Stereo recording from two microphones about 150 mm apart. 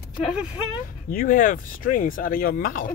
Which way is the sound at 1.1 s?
70° left (ahead or behind).